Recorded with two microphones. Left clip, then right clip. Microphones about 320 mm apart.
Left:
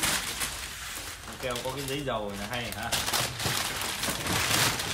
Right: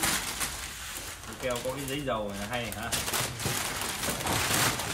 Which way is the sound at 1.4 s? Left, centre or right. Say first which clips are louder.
Right 1 dB; centre.